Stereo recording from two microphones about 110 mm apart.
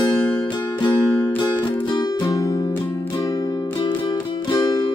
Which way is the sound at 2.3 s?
35° left (ahead or behind).